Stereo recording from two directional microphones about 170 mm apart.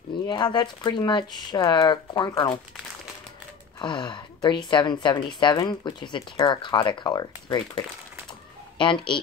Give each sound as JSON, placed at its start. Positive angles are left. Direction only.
{"t": 0.3, "sound": "a woman's voice", "side_deg": 25}
{"t": 3.8, "sound": "a woman's voice", "side_deg": 25}